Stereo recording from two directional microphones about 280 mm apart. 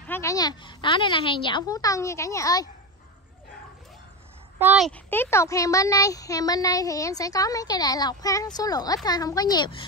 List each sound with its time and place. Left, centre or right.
0.0 s a child's voice: centre
4.6 s a child's voice: centre